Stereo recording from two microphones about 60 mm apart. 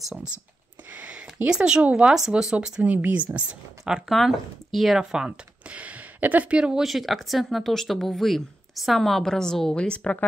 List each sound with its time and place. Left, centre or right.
0.9 s speech: right
2.1 s speech: centre
2.8 s speech: right
4.1 s speech: centre
5.7 s speech: right
6.8 s speech: centre